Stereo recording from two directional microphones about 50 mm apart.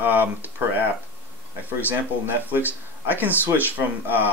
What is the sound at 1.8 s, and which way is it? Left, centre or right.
Speech, right.